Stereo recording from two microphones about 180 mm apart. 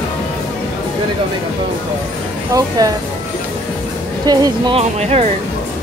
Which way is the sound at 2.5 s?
20° right (ahead or behind).